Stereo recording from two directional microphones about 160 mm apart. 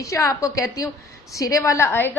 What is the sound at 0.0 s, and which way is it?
A woman's voice, 20° left (ahead or behind).